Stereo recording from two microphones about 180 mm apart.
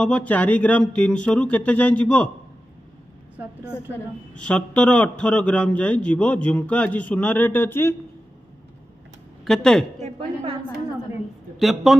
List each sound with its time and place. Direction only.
0.0 s a man's voice: 5° left (ahead or behind)
4.4 s a man's voice: 5° left (ahead or behind)
9.4 s speech: 5° left (ahead or behind)
9.9 s a woman's voice: 35° right (ahead or behind)
11.6 s a man's voice: centre (ahead or behind)